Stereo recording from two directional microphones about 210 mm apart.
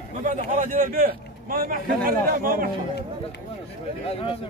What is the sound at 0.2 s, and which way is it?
A man's voice, 35° right (ahead or behind).